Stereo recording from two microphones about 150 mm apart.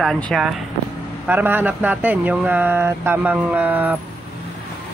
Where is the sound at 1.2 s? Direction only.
10° right (ahead or behind).